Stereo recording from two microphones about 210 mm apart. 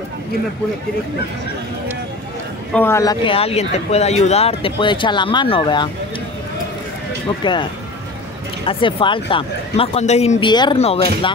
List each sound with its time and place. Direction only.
2.7 s speech: 10° left (ahead or behind)
8.6 s speech: 25° left (ahead or behind)